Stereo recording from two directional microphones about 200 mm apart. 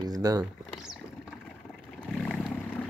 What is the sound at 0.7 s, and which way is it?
Boat, centre (ahead or behind).